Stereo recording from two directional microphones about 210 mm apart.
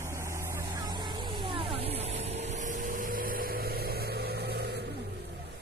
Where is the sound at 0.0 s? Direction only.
15° right (ahead or behind); by 4.8 s 50° right (ahead or behind).